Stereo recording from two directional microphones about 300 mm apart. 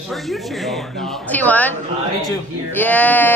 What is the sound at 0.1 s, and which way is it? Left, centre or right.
Speech, centre.